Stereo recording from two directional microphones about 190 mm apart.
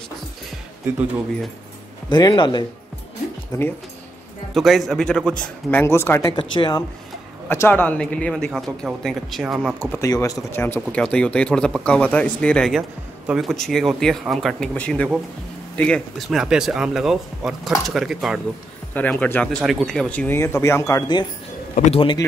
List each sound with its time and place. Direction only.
2.0 s speech: 25° left (ahead or behind)
4.6 s speech: centre (ahead or behind)
6.3 s speech: 25° left (ahead or behind)
7.4 s speech: 10° left (ahead or behind); by 9.8 s 5° right (ahead or behind)
9.8 s speech: 10° left (ahead or behind)